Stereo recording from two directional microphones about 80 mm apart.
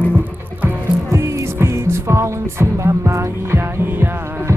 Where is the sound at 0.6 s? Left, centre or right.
Right.